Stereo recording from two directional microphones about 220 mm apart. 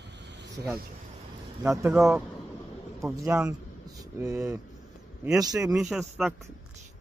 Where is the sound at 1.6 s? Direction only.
10° right (ahead or behind).